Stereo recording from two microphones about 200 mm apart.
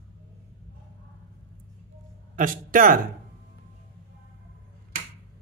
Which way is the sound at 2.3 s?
45° right (ahead or behind).